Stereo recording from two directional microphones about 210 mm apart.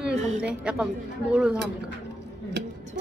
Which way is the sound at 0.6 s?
5° right (ahead or behind).